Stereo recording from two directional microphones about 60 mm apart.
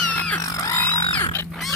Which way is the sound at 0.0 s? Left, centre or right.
Left.